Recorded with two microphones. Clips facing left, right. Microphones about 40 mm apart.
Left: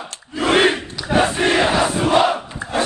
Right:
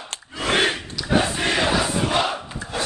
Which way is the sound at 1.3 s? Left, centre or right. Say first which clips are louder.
Left 5 dB; left.